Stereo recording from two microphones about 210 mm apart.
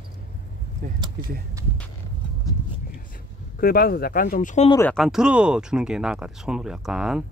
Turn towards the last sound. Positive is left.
turn(degrees=0)  # may be behind; listen again after turning